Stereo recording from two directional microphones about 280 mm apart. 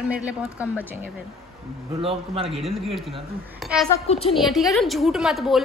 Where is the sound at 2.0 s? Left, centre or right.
Centre.